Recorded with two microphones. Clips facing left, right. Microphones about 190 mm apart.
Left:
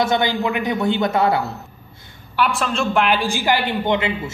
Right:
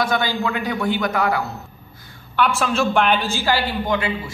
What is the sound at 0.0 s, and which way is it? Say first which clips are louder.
A man's voice: left 2 dB; 20° left (ahead or behind).